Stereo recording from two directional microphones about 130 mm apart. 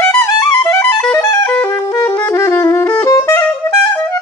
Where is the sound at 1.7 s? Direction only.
25° left (ahead or behind).